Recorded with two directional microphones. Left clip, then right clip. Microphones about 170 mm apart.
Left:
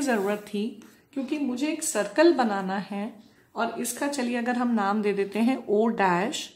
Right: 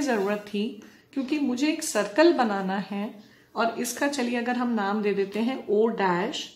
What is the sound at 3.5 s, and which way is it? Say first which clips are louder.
A woman's voice: right 3 dB; centre (ahead or behind).